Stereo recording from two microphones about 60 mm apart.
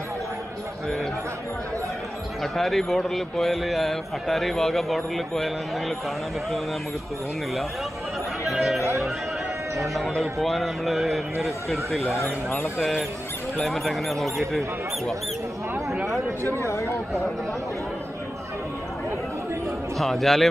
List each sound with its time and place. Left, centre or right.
2.4 s a man's voice: centre
8.5 s a sound: centre
9.8 s a man's voice: centre
12.2 s speech: left
13.6 s a man's voice: centre
16.6 s speech: left
20.0 s a man's voice: centre